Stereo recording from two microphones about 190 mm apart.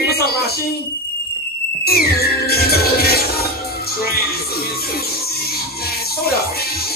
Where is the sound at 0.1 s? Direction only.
55° left (ahead or behind).